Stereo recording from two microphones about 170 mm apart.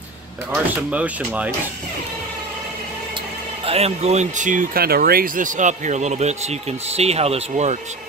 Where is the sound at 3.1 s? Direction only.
35° right (ahead or behind).